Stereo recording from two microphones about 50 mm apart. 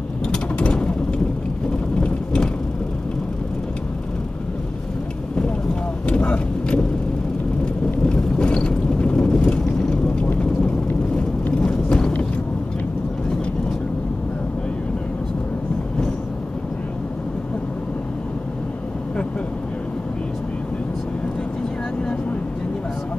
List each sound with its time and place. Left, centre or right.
0.3 s mechanisms: left
2.0 s rain: left
6.0 s vehicle: left
8.1 s vehicle: centre
11.4 s horse: left